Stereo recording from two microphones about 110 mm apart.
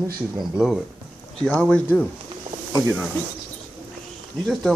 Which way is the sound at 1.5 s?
10° left (ahead or behind).